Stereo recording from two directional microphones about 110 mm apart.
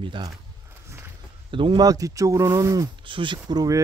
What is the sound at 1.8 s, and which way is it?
Speech, 30° right (ahead or behind).